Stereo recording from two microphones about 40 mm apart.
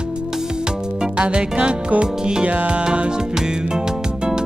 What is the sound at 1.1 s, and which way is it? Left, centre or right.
Music, right.